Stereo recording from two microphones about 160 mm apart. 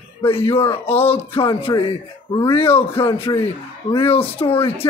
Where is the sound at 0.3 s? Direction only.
35° left (ahead or behind).